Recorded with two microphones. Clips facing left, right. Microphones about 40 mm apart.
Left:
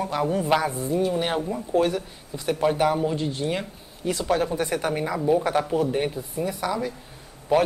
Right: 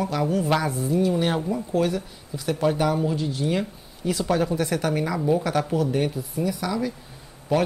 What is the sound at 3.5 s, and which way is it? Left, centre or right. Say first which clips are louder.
A woman's voice: right 3 dB; centre.